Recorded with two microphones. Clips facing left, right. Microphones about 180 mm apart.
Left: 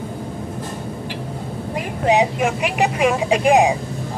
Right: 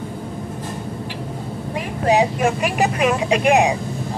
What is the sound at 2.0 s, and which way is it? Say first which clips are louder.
Speech: even; 15° left (ahead or behind).